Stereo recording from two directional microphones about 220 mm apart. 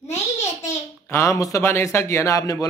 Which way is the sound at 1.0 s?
10° left (ahead or behind).